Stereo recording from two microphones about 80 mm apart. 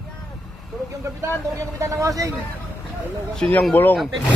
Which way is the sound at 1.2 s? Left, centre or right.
Right.